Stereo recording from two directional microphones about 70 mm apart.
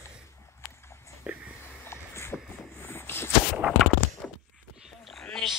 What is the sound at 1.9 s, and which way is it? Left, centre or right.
Boat, left.